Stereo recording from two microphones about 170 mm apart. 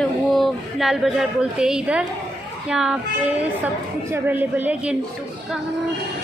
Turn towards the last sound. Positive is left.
turn(degrees=-10)  # may be behind; listen again after turning